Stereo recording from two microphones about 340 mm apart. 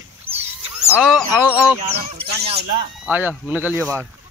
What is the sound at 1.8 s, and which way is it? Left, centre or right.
Speech, centre.